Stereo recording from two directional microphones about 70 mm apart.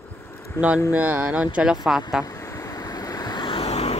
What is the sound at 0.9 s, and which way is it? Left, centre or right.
Speech, right.